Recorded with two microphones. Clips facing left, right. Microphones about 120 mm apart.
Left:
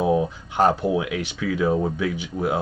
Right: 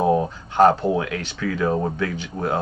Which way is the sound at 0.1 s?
10° left (ahead or behind).